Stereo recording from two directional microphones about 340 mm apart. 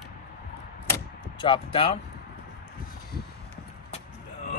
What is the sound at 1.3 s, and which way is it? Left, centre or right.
Speech, centre.